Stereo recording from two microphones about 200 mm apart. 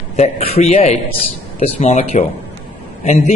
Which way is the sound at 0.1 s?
30° left (ahead or behind).